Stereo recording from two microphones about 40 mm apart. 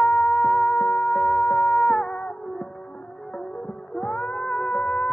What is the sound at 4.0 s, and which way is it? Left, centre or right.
Music, centre.